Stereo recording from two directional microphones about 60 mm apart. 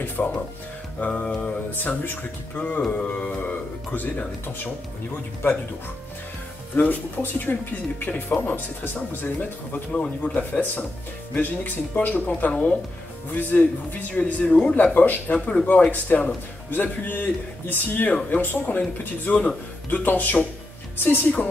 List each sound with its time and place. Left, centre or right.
0.2 s speech: left
0.9 s speech: left
6.7 s speech: left
15.3 s speech: centre; by 21.3 s left